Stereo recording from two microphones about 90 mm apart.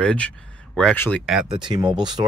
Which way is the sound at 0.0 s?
15° left (ahead or behind).